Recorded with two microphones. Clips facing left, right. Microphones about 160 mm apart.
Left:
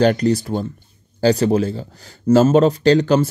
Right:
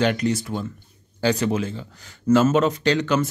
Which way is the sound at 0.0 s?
35° left (ahead or behind).